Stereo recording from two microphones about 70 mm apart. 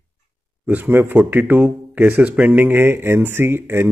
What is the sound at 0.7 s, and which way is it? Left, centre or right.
A man's voice, right.